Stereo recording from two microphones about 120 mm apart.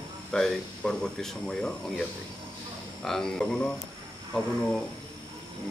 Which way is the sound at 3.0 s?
5° left (ahead or behind).